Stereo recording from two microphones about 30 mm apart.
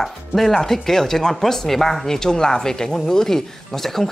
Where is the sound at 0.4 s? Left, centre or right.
Centre.